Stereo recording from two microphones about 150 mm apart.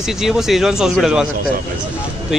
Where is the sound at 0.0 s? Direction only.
5° right (ahead or behind).